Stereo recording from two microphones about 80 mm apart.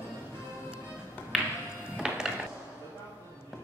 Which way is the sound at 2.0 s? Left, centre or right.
Centre.